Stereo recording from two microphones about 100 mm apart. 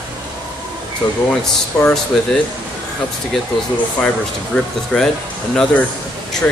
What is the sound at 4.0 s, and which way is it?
Speech, 10° left (ahead or behind).